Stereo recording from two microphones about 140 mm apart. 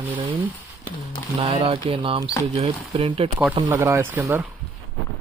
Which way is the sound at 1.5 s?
40° right (ahead or behind).